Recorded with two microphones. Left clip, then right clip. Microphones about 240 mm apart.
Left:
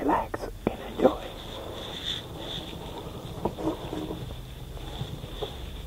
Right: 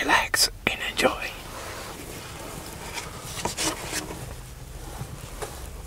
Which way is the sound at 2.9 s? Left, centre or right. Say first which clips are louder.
Right 4 dB; right.